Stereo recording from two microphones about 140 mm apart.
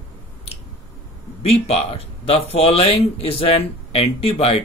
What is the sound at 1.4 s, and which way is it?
Speech, 45° left (ahead or behind).